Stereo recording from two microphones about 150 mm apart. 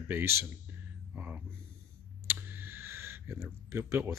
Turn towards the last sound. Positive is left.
turn(degrees=-15)  # may be behind; listen again after turning